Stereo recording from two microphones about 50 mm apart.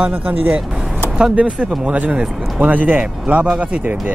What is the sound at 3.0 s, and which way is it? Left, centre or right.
Speech, right.